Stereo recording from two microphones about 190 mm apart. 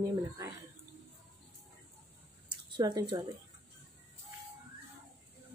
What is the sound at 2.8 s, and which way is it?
Speech, 20° right (ahead or behind).